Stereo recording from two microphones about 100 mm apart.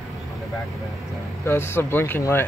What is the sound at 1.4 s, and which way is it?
Speech, 25° left (ahead or behind).